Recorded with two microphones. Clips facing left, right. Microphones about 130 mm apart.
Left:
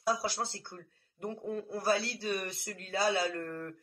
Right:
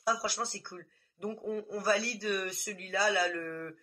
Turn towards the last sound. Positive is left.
turn(degrees=25)  # may be behind; listen again after turning